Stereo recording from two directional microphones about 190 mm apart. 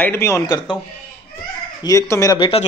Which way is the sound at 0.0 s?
15° left (ahead or behind).